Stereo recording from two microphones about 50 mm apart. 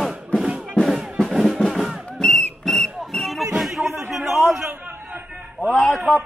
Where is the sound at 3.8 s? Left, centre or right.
Right.